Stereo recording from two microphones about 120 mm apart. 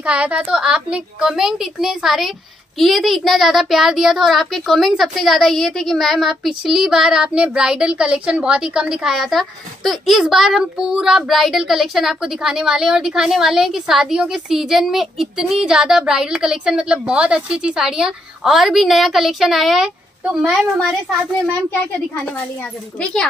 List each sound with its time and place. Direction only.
0.0 s a woman's voice: 10° right (ahead or behind)
22.3 s a child's voice: 10° left (ahead or behind)